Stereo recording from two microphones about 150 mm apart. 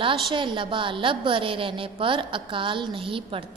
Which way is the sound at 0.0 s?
35° right (ahead or behind).